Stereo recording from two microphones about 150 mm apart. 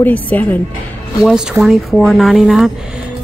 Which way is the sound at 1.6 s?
Centre (ahead or behind).